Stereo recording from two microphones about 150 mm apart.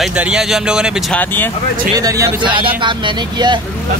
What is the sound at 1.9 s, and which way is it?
Speech, 20° right (ahead or behind).